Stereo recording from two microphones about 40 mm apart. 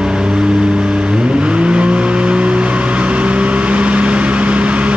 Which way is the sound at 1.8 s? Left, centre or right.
Right.